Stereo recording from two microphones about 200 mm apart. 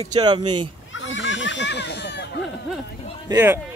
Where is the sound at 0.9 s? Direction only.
70° left (ahead or behind).